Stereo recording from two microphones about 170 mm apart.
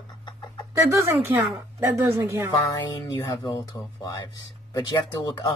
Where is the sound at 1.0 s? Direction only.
15° right (ahead or behind).